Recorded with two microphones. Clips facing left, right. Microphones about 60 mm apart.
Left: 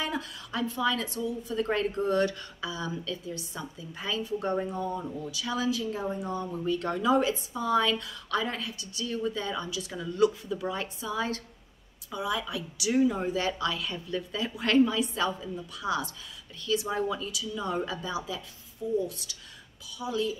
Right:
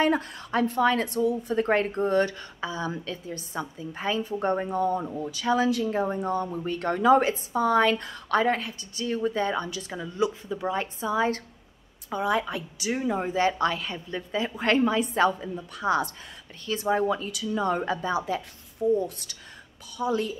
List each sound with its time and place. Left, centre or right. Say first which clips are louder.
0.0 s speech: right 9 dB; right
4.6 s speech: right 6 dB; right
9.9 s a woman's voice: left 2 dB; right